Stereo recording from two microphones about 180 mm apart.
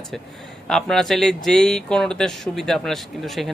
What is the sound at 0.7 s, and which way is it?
Speech, 5° left (ahead or behind).